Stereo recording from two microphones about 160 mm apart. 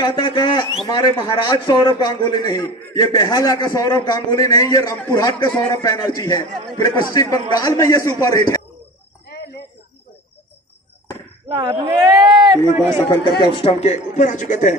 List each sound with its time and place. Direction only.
0.0 s a man's voice: 30° left (ahead or behind)
11.5 s speech: 25° right (ahead or behind)
13.4 s speech: 35° left (ahead or behind); by 14.8 s 50° left (ahead or behind)